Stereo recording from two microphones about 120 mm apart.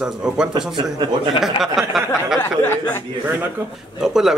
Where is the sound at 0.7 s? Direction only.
40° right (ahead or behind).